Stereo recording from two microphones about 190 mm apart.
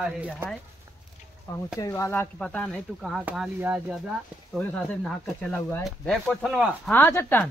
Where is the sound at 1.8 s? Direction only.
15° left (ahead or behind); by 4.0 s 10° right (ahead or behind).